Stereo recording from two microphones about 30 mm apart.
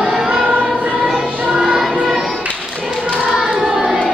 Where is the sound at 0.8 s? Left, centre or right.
Right.